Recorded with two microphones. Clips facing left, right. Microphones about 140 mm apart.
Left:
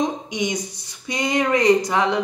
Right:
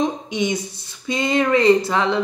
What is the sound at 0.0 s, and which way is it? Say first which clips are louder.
Speech: right 2 dB; 15° left (ahead or behind).